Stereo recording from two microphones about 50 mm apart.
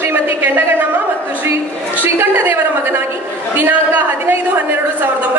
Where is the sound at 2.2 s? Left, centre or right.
Right.